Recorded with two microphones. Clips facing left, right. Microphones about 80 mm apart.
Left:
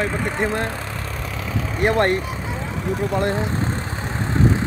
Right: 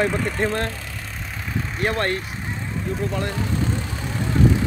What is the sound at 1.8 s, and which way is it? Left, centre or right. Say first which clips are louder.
Speech: left 5 dB; left.